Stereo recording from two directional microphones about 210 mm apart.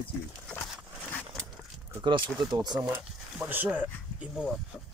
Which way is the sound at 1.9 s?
20° right (ahead or behind).